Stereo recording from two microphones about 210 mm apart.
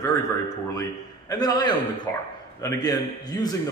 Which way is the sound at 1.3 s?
20° left (ahead or behind).